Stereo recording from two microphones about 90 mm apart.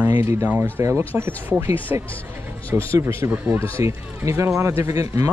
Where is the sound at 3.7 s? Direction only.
35° right (ahead or behind).